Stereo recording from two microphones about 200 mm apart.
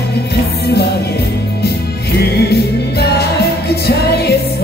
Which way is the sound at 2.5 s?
55° left (ahead or behind).